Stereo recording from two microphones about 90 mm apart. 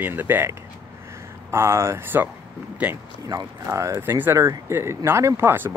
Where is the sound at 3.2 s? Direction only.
35° right (ahead or behind).